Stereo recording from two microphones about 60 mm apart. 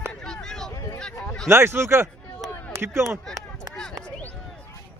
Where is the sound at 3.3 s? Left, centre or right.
Centre.